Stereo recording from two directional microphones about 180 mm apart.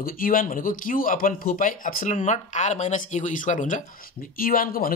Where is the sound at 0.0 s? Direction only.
50° left (ahead or behind).